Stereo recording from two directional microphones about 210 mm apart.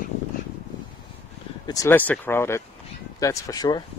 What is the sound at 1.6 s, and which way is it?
Speech, 15° left (ahead or behind).